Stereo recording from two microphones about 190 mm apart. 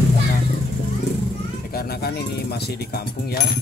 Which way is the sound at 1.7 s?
55° left (ahead or behind).